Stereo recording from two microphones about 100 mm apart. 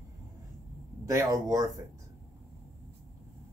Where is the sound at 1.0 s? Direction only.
35° right (ahead or behind).